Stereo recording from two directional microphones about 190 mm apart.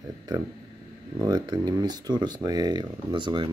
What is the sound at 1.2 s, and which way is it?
Speech, 20° right (ahead or behind).